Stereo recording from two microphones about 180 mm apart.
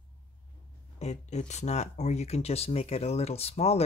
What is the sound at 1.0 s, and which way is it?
Speech, 40° left (ahead or behind).